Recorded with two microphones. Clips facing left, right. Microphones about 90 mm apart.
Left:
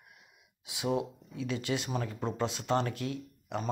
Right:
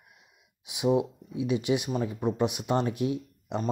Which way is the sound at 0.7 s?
20° right (ahead or behind).